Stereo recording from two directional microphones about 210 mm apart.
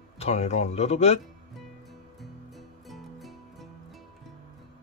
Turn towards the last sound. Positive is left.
turn(degrees=0)  # may be behind; listen again after turning